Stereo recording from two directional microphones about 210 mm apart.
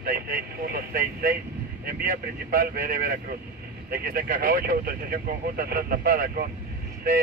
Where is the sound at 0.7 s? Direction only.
45° right (ahead or behind).